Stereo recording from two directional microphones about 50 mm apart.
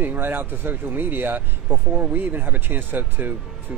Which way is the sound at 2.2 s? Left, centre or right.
Right.